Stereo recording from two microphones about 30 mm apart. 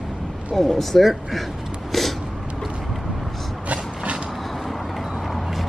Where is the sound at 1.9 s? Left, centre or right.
Centre.